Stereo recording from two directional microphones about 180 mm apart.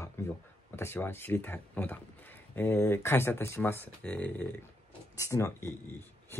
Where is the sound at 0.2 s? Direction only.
15° left (ahead or behind).